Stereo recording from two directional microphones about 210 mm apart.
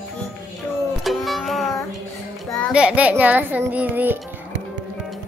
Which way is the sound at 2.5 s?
Centre (ahead or behind).